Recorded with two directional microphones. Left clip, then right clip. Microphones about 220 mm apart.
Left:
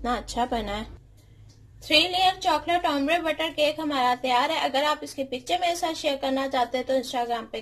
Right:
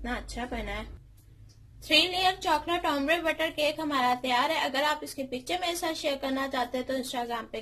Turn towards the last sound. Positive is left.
turn(degrees=0)  # may be behind; listen again after turning